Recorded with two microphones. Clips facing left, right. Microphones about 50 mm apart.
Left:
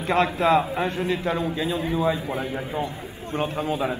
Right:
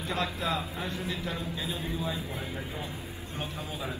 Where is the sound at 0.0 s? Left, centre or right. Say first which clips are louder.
Left 11 dB; left.